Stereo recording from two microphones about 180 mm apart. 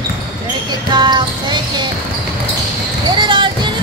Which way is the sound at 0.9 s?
25° right (ahead or behind).